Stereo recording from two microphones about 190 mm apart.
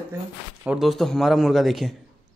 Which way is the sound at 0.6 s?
5° right (ahead or behind).